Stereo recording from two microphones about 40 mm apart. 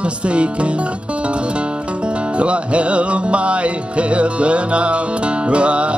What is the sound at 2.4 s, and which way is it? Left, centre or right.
Music, right.